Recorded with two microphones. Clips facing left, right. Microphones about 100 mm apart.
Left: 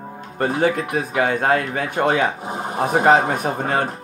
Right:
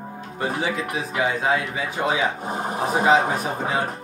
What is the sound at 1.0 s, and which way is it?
Speech, 50° left (ahead or behind).